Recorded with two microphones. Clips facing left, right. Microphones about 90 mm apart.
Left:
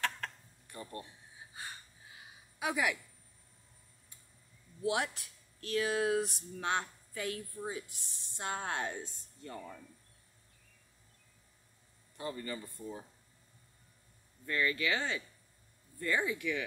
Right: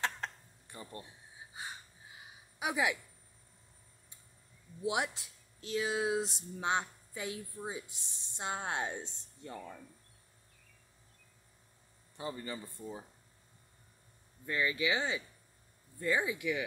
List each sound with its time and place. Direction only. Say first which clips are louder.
0.0 s a sound: even; 20° right (ahead or behind)
2.6 s speech: even; 15° right (ahead or behind)
4.8 s speech: left 1 dB; 20° right (ahead or behind)
12.2 s speech: even; 20° right (ahead or behind)
14.4 s speech: even; 15° right (ahead or behind)